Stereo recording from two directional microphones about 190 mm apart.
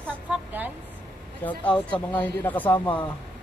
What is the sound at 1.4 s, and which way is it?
Speech, 5° left (ahead or behind).